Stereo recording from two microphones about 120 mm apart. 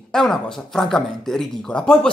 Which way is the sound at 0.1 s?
5° left (ahead or behind).